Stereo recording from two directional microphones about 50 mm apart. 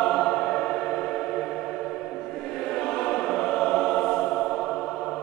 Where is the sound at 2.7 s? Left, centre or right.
Centre.